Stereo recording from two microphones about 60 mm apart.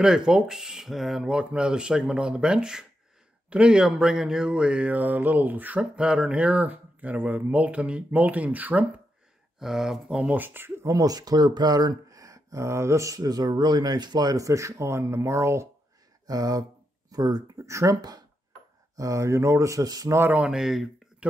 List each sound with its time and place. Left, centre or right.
0.0 s speech: centre
1.2 s speech: centre
5.8 s speech: centre
9.6 s speech: centre
10.3 s speech: right
10.9 s speech: right
14.2 s speech: right
16.3 s speech: right
20.4 s speech: centre
21.2 s a sound: right